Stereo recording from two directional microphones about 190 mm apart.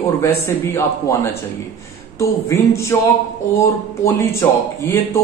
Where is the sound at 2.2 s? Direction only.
15° left (ahead or behind).